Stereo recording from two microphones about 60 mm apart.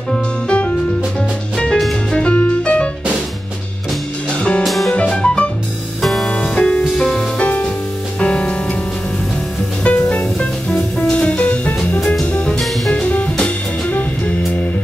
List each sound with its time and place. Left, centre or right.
0.1 s music: centre
2.1 s music: left
4.3 s music: centre
4.6 s music: centre
4.9 s music: centre
6.8 s music: centre
7.3 s music: left
9.8 s music: left